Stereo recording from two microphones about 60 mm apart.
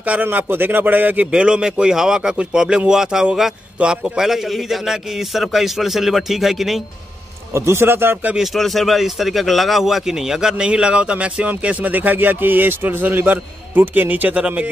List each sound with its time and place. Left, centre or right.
0.0 s a man's voice: right
1.3 s a man's voice: centre
7.5 s a man's voice: right
8.4 s a man's voice: centre; by 14.4 s right